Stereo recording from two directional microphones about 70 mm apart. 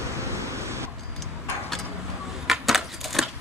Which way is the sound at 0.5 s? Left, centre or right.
Right.